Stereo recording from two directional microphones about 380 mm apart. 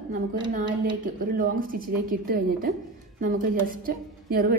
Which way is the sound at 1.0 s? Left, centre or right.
Right.